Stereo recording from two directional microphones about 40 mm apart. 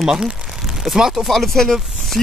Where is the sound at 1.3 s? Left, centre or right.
Centre.